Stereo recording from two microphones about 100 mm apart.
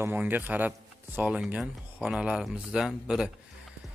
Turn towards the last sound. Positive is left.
turn(degrees=-5)  # may be behind; listen again after turning